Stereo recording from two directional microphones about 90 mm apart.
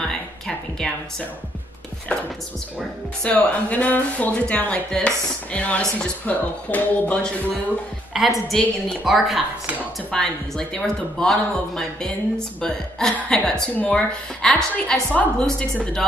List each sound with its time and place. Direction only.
0.0 s a sound: 10° left (ahead or behind)
2.1 s speech: 15° left (ahead or behind)
8.1 s a man's voice: centre (ahead or behind)